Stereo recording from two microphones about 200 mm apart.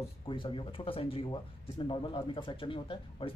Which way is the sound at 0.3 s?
25° left (ahead or behind).